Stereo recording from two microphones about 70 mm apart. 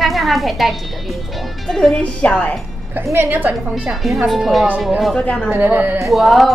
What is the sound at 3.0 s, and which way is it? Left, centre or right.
Speech, right.